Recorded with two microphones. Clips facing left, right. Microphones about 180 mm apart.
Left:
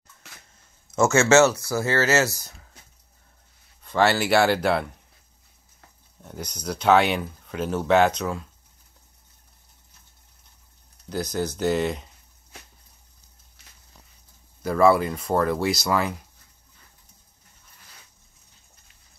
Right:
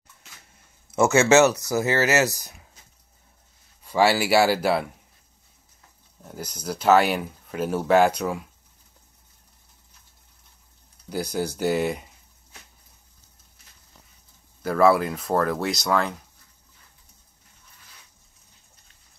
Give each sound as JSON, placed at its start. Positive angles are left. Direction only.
{"t": 0.9, "sound": "speech", "side_deg": -15}
{"t": 3.8, "sound": "speech", "side_deg": -10}
{"t": 6.2, "sound": "speech", "side_deg": -5}
{"t": 11.1, "sound": "speech", "side_deg": -10}
{"t": 14.6, "sound": "speech", "side_deg": 0}